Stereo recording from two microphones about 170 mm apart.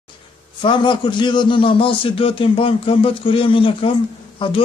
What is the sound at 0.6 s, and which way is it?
A man's voice, 30° left (ahead or behind).